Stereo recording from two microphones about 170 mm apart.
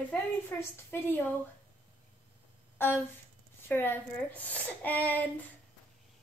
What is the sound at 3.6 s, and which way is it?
A woman's voice, 10° left (ahead or behind).